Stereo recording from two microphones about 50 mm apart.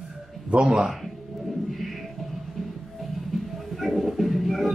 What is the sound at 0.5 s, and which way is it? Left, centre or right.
Speech, centre.